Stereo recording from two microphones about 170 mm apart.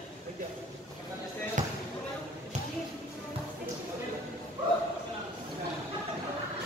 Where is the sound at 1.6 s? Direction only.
50° right (ahead or behind).